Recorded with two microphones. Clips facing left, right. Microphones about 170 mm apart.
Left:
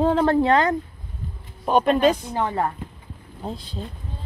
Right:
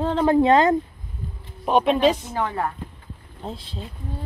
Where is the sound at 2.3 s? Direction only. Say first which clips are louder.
Left 2 dB; 25° left (ahead or behind).